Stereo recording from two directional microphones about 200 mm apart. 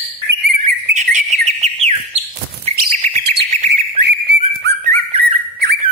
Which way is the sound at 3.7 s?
55° right (ahead or behind).